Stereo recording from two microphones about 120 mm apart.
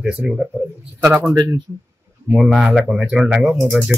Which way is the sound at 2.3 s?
Centre (ahead or behind).